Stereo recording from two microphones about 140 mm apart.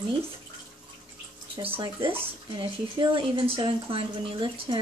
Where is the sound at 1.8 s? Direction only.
35° right (ahead or behind).